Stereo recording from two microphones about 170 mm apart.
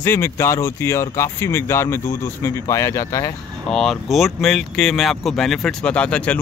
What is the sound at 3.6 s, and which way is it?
Speech, 5° left (ahead or behind).